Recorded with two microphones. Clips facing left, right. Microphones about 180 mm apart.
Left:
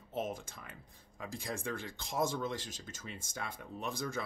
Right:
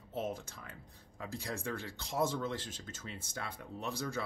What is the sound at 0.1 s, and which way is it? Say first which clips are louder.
Speech: even; 15° left (ahead or behind).